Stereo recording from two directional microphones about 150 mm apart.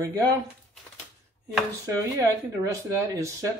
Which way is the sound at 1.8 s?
20° right (ahead or behind).